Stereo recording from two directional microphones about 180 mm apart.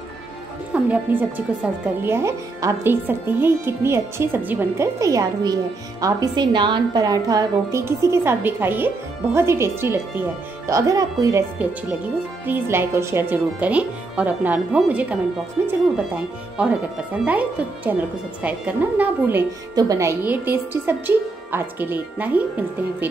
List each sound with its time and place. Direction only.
0.8 s speech: 10° right (ahead or behind)